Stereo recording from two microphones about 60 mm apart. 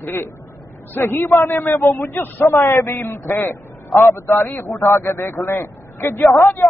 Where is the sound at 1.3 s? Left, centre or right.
Left.